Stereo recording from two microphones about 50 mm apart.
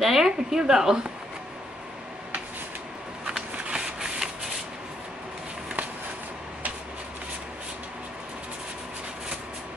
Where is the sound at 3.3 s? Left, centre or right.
Centre.